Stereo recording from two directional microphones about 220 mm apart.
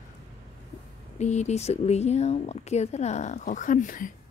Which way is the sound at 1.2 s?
30° left (ahead or behind).